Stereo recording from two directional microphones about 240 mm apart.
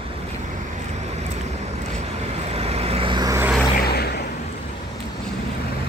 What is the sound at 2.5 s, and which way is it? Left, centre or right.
Vehicle, right.